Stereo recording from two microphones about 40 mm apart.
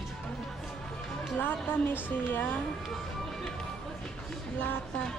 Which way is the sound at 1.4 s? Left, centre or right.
Left.